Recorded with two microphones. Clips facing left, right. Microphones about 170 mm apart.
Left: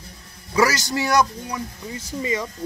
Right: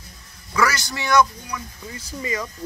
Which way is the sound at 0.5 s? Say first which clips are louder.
Left 3 dB; 35° left (ahead or behind).